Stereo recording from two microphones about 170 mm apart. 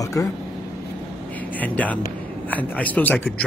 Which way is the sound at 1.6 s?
10° left (ahead or behind).